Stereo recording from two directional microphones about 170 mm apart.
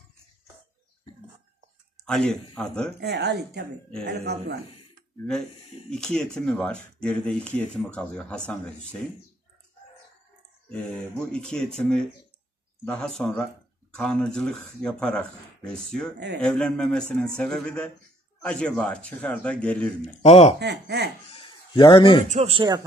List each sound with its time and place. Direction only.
2.0 s speech: 5° left (ahead or behind)
3.0 s speech: 80° right
5.9 s speech: 5° left (ahead or behind)
10.7 s a man's voice: 5° left (ahead or behind)
20.2 s speech: 40° left (ahead or behind)
20.5 s speech: 80° right
21.3 s a sound: 30° left (ahead or behind)
22.3 s speech: 35° right (ahead or behind)